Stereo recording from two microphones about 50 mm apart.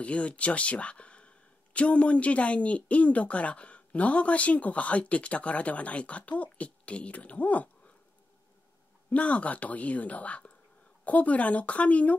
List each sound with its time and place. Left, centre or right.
0.0 s speech: left
9.1 s speech: left